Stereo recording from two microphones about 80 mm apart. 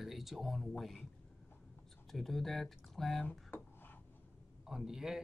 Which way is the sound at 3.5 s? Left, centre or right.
Left.